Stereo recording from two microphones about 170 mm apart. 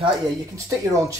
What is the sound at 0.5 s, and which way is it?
Speech, 20° right (ahead or behind).